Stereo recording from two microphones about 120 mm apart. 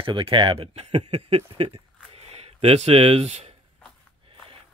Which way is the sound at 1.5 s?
50° right (ahead or behind).